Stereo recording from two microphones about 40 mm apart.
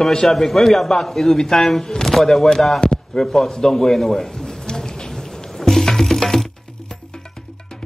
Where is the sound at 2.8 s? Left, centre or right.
Centre.